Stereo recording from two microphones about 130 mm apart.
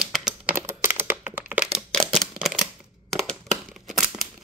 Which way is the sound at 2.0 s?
5° left (ahead or behind).